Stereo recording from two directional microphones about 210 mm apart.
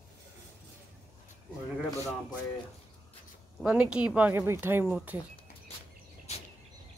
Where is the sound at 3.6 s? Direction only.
5° right (ahead or behind).